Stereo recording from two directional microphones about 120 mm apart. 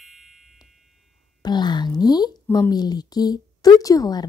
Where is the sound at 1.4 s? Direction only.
35° left (ahead or behind).